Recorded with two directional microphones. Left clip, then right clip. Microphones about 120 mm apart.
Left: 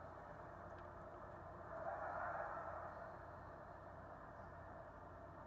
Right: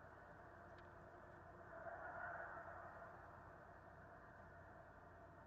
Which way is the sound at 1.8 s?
30° left (ahead or behind).